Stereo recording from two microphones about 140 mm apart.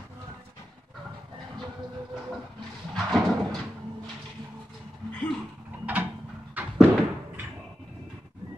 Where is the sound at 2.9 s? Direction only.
Centre (ahead or behind).